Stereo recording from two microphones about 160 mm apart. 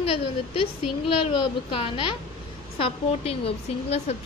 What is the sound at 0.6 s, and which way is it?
Speech, 35° left (ahead or behind).